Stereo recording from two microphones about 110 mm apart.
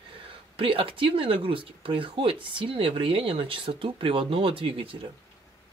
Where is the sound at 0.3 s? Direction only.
55° right (ahead or behind).